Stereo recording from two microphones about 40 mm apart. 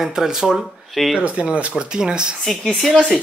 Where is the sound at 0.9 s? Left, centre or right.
Centre.